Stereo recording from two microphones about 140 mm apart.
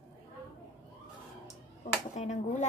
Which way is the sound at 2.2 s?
55° left (ahead or behind).